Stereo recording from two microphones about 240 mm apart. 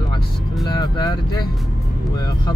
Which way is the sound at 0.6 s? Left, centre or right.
Centre.